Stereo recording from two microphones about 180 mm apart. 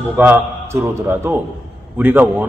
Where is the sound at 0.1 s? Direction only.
10° right (ahead or behind).